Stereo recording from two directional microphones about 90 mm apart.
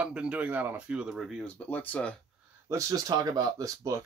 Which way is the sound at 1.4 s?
20° left (ahead or behind).